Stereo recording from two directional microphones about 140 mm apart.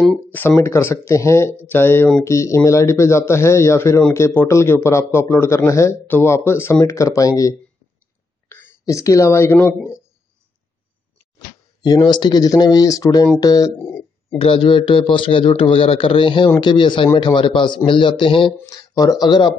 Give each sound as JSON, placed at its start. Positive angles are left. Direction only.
{"t": 0.3, "sound": "speech", "side_deg": 15}
{"t": 11.3, "sound": "speech", "side_deg": 30}
{"t": 14.4, "sound": "speech", "side_deg": 40}
{"t": 18.7, "sound": "speech", "side_deg": 25}